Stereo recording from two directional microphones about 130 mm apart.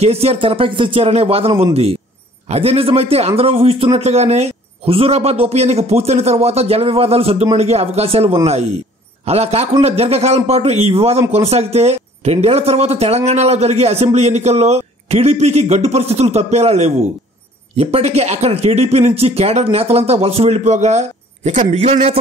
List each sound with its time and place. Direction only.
0.0 s a man's voice: 50° right (ahead or behind)